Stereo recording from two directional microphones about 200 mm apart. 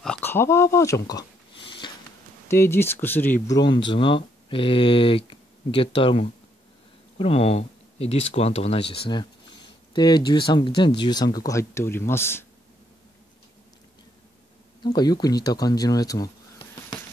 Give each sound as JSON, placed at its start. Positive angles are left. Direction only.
{"t": 0.0, "sound": "speech", "side_deg": 5}
{"t": 1.8, "sound": "a sound", "side_deg": 25}
{"t": 2.5, "sound": "speech", "side_deg": 10}
{"t": 3.4, "sound": "speech", "side_deg": 20}
{"t": 14.8, "sound": "speech", "side_deg": 20}